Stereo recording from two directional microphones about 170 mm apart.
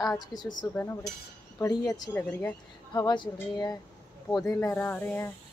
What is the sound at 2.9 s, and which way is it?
Speech, 25° left (ahead or behind).